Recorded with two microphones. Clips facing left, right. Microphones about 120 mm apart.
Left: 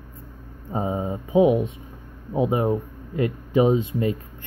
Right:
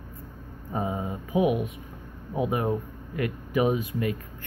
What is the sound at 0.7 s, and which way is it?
Speech, 25° left (ahead or behind).